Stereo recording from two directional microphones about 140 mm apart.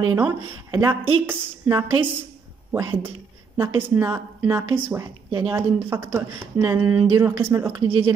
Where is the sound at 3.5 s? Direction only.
15° right (ahead or behind).